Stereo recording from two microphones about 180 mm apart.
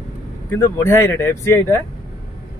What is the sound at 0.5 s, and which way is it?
Speech, 15° left (ahead or behind).